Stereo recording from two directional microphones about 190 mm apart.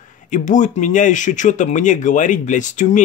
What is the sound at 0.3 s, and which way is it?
Speech, 40° left (ahead or behind).